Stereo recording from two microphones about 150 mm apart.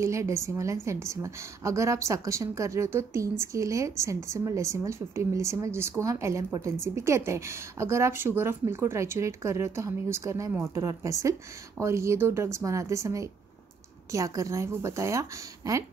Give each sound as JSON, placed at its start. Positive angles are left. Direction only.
{"t": 0.0, "sound": "a woman's voice", "side_deg": -20}